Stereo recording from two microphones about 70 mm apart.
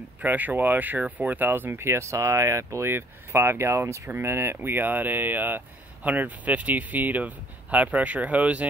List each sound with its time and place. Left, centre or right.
0.2 s speech: right